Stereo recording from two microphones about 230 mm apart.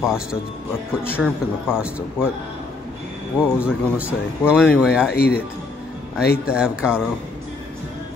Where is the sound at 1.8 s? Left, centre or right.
Centre.